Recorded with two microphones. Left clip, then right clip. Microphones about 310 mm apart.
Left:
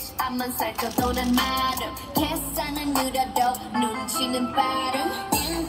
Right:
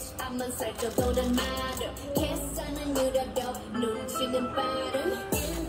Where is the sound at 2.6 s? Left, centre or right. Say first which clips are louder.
Left 3 dB; centre.